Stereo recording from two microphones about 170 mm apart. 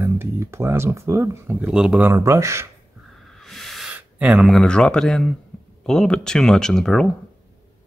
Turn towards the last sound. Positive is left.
turn(degrees=5)  # may be behind; listen again after turning